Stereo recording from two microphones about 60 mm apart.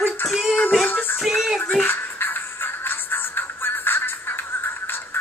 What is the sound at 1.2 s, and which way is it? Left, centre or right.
Music, centre.